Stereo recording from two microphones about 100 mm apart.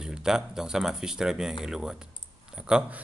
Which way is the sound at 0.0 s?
5° right (ahead or behind).